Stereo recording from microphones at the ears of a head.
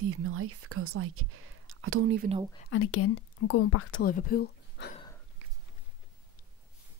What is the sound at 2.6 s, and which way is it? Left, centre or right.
Speech, left.